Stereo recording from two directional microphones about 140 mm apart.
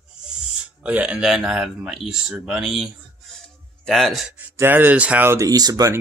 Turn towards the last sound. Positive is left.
turn(degrees=-25)  # may be behind; listen again after turning